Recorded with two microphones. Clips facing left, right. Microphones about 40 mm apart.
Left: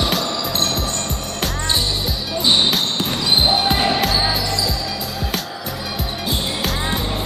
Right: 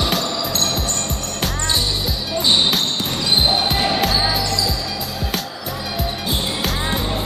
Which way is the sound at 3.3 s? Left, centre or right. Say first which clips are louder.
Left 1 dB; centre.